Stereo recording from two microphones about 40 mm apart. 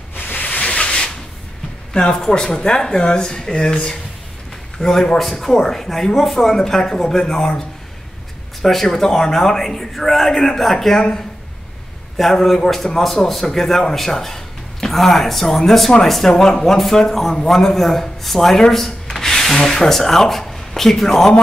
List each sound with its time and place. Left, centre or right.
0.1 s hiss: left
0.6 s rub: left
2.0 s speech: centre
4.7 s a man's voice: centre
8.6 s speech: centre
12.2 s speech: centre